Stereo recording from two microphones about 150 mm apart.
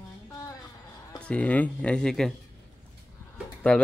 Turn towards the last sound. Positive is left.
turn(degrees=5)  # may be behind; listen again after turning